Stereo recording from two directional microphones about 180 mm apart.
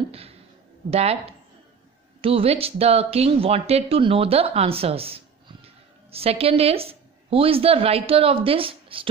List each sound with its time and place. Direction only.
0.8 s speech: 35° right (ahead or behind)